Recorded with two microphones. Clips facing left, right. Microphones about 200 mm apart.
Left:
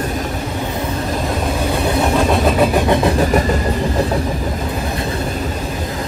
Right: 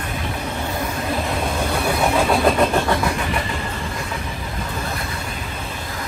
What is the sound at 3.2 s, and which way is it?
Vehicle, 40° left (ahead or behind).